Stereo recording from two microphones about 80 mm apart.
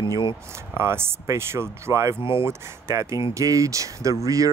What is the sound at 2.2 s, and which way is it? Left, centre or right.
Speech, left.